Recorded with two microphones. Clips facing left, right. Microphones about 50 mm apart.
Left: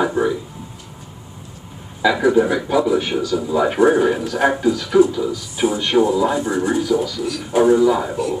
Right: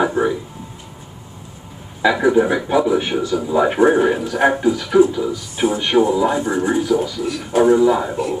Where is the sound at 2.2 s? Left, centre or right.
Centre.